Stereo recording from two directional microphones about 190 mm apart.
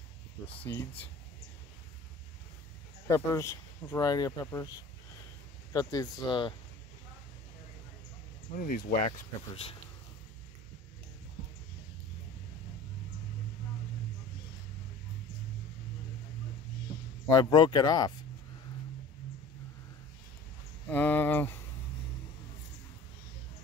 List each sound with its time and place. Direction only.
0.6 s speech: 10° left (ahead or behind)
3.1 s speech: 15° left (ahead or behind)
8.5 s speech: 45° left (ahead or behind)
17.3 s speech: 20° left (ahead or behind)
20.9 s speech: 10° left (ahead or behind)